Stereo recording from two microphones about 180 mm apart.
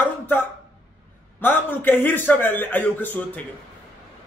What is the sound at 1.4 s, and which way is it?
A man's voice, 10° left (ahead or behind).